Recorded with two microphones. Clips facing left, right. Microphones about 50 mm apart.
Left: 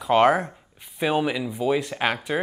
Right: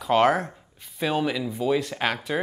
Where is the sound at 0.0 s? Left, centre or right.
Centre.